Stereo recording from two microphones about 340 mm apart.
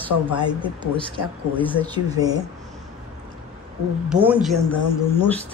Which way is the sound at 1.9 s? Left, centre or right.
Centre.